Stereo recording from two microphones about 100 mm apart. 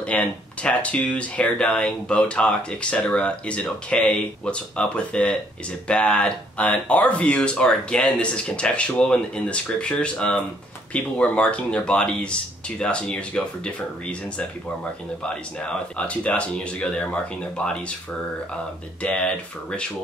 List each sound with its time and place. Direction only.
0.0 s speech: 15° left (ahead or behind)
15.2 s speech: 10° left (ahead or behind)
19.0 s speech: 10° left (ahead or behind)